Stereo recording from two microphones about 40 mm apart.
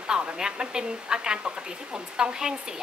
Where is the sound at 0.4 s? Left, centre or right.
Centre.